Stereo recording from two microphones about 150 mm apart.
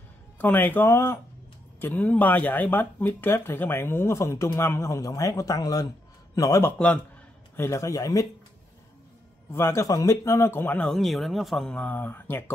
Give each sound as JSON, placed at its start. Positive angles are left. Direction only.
{"t": 0.4, "sound": "a man's voice", "side_deg": 10}
{"t": 9.5, "sound": "speech", "side_deg": 20}